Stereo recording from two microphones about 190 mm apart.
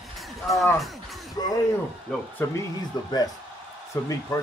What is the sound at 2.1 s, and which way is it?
Speech, 10° left (ahead or behind).